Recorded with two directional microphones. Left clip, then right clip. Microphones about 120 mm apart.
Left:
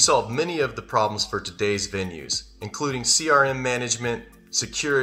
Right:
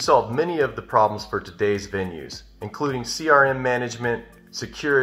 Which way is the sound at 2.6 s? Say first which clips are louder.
Right 2 dB; 25° left (ahead or behind).